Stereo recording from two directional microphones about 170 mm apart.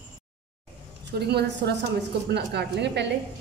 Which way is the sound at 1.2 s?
75° right (ahead or behind).